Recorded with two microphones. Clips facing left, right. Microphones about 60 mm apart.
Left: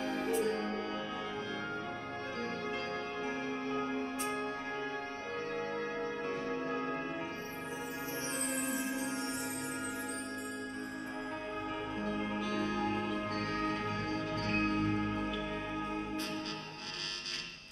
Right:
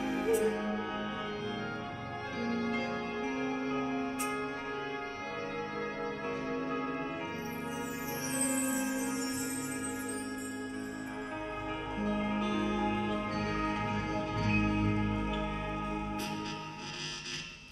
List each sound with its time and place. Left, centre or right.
0.0 s music: centre
2.4 s music: centre
8.4 s music: centre
12.0 s music: centre